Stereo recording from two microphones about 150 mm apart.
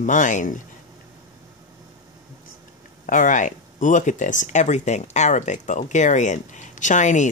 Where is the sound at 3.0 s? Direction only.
60° left (ahead or behind).